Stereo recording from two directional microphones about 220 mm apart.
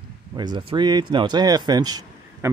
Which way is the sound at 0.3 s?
20° right (ahead or behind).